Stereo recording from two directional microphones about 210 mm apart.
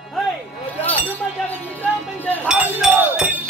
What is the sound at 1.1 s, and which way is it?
Speech, 10° left (ahead or behind).